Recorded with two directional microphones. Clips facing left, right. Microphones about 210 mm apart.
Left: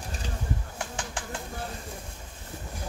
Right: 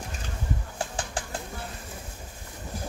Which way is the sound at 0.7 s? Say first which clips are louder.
Right 3 dB; 35° right (ahead or behind).